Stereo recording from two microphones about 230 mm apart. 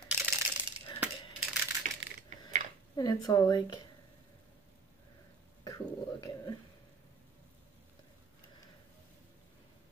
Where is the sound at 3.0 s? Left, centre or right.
Centre.